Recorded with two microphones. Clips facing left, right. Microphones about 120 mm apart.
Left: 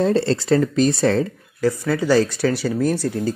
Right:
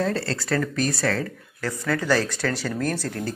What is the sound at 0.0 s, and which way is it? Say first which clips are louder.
Speech: left 7 dB; 25° left (ahead or behind).